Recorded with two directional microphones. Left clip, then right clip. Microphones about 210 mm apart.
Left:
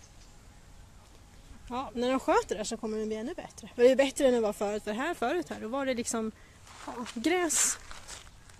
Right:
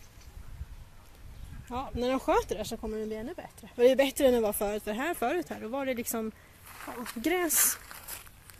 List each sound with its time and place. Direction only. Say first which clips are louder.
1.7 s speech: even; 5° left (ahead or behind)
6.8 s speech: left 1 dB; centre (ahead or behind)
7.5 s a sound: even; 15° right (ahead or behind)